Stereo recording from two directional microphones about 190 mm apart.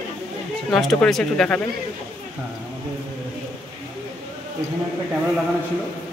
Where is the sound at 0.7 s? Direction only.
Centre (ahead or behind).